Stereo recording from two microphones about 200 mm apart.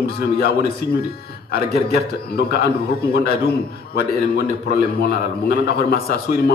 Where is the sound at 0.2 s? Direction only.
50° left (ahead or behind).